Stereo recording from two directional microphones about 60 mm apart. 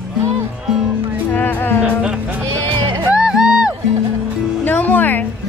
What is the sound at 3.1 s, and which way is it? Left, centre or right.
Music, centre.